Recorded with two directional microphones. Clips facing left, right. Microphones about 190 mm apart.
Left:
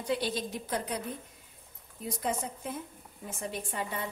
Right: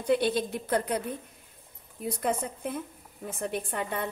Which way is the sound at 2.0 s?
60° right (ahead or behind).